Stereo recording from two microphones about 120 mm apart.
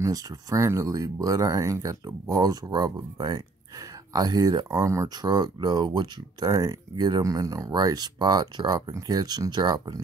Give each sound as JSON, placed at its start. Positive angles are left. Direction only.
{"t": 0.0, "sound": "speech", "side_deg": -30}